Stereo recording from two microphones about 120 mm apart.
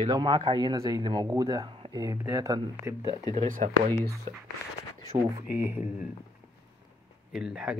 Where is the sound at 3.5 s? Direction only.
90° right.